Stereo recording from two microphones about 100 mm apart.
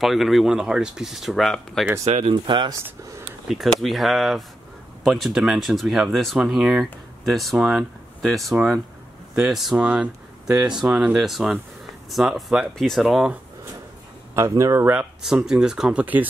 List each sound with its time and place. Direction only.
0.0 s speech: centre (ahead or behind)
2.1 s speech: 90° right
2.4 s speech: 55° right (ahead or behind)
3.4 s speech: centre (ahead or behind)
14.6 s speech: 30° right (ahead or behind)
15.2 s speech: 5° right (ahead or behind)